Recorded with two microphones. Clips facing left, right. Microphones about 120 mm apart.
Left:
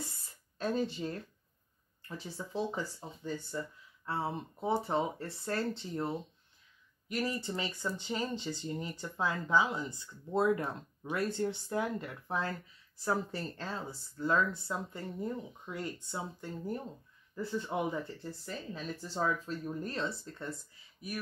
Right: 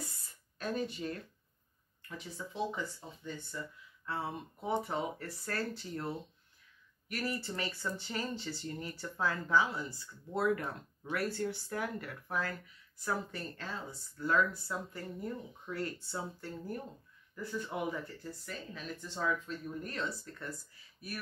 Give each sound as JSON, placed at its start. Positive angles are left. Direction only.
{"t": 0.6, "sound": "speech", "side_deg": 30}